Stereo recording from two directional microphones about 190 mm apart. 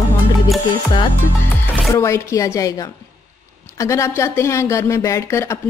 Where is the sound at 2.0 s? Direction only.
15° left (ahead or behind).